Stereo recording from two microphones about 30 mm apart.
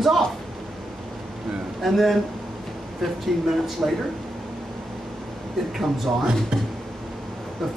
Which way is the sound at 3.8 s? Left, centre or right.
Right.